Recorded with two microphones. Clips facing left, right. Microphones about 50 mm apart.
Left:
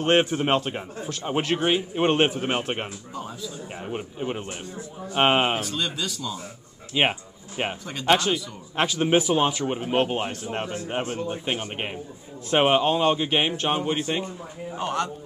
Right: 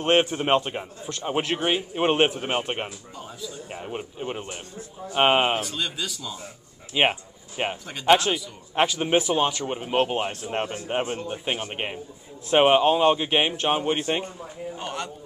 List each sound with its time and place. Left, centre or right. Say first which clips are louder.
0.0 s speech: even; centre
10.5 s a man's voice: right 3 dB; centre
13.9 s a man's voice: right 1 dB; right
14.8 s speech: left 7 dB; centre